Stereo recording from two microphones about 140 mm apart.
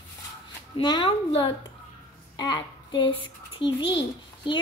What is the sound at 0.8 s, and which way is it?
A child's voice, 35° left (ahead or behind).